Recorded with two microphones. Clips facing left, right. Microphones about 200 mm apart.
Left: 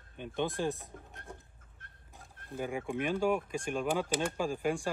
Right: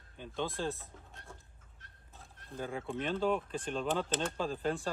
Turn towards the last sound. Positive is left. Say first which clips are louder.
# left 2 dB
turn(degrees=10)  # may be behind; listen again after turning